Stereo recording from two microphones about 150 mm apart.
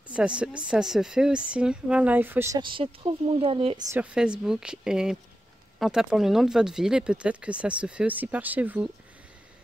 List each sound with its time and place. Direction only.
0.1 s speech: 10° right (ahead or behind)
2.6 s speech: 35° right (ahead or behind)
3.9 s speech: 10° right (ahead or behind)